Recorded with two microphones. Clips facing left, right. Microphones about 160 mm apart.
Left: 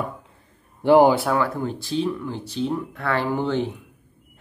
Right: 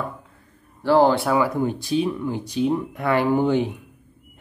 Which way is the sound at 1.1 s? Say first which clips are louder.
Right 1 dB; centre (ahead or behind).